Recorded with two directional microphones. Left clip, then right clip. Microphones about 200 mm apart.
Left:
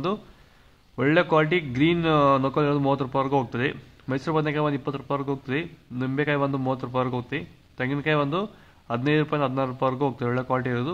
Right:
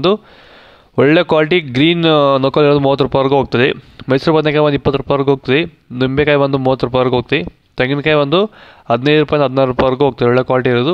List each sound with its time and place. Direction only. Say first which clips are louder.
0.9 s speech: right 10 dB; 45° right (ahead or behind)